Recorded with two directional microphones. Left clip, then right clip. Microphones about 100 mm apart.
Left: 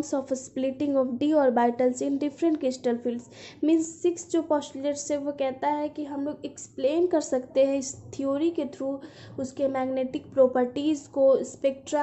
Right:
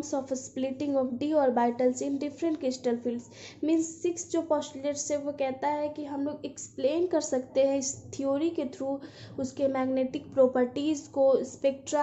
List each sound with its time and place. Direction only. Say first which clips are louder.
0.0 s a woman's voice: left 3 dB; 35° left (ahead or behind); by 12.0 s 20° left (ahead or behind)